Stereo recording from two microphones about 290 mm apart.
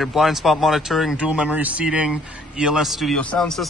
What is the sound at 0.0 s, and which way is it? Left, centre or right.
Speech, centre.